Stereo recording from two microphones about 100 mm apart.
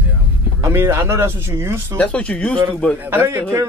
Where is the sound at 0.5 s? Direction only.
25° right (ahead or behind).